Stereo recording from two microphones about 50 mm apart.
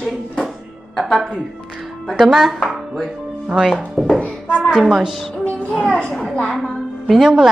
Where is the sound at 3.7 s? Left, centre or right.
Centre.